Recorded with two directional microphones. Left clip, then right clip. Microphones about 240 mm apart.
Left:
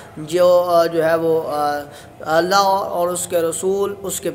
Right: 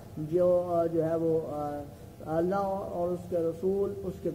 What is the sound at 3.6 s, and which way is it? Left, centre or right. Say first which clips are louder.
Speech: left 10 dB; left.